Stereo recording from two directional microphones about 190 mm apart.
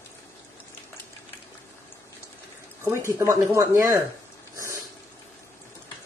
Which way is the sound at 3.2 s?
15° right (ahead or behind).